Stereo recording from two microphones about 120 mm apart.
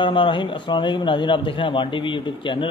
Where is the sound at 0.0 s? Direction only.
45° left (ahead or behind).